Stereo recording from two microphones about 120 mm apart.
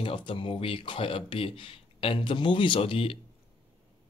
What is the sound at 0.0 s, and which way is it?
Speech, 45° left (ahead or behind).